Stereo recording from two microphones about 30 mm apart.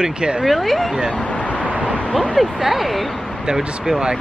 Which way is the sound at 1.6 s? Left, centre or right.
Right.